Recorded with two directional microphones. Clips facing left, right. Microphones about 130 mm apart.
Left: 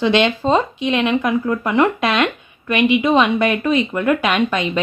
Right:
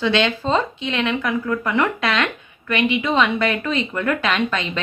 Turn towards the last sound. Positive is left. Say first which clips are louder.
# left 4 dB
turn(degrees=15)  # may be behind; listen again after turning